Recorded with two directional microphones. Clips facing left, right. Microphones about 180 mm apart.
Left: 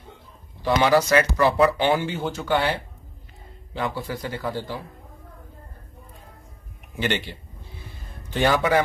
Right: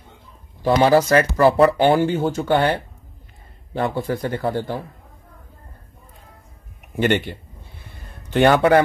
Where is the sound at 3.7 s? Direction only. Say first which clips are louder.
Right 6 dB; 50° right (ahead or behind).